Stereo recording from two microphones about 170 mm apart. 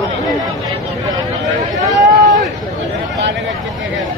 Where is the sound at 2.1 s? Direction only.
45° right (ahead or behind).